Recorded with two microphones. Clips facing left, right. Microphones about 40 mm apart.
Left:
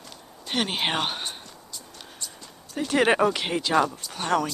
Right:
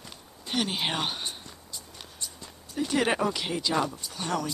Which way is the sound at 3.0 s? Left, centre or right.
Left.